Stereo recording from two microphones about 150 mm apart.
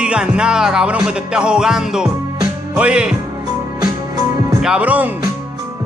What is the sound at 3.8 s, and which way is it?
Music, 25° right (ahead or behind).